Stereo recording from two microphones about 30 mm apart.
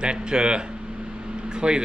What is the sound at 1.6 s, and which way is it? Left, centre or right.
Speech, right.